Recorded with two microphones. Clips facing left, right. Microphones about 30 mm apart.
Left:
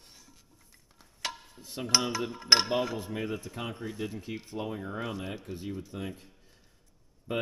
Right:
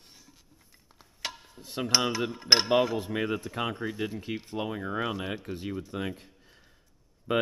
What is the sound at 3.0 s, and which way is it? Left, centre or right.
Speech, right.